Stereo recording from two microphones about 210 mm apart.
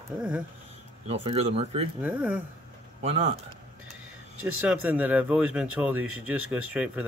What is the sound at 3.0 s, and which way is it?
Speech, 30° right (ahead or behind).